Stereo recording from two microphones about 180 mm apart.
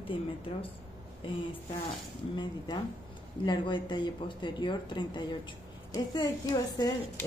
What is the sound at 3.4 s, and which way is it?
Speech, 25° left (ahead or behind).